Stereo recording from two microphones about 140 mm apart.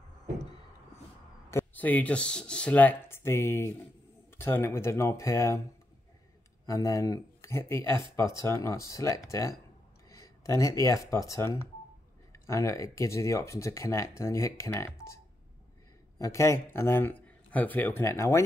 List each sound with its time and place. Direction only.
1.5 s speech: 15° left (ahead or behind)
6.6 s speech: 25° left (ahead or behind)
16.2 s speech: 20° left (ahead or behind)